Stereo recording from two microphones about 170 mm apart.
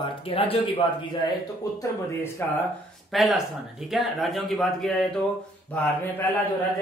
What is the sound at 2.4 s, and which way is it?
Speech, 10° left (ahead or behind).